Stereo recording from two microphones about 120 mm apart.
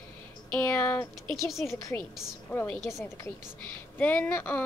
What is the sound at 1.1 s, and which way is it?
Speech, centre (ahead or behind).